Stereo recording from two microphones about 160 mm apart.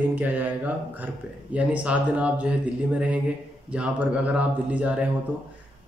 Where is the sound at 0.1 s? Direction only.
10° right (ahead or behind).